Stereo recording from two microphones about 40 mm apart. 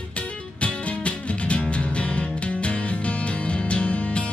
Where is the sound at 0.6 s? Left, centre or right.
Left.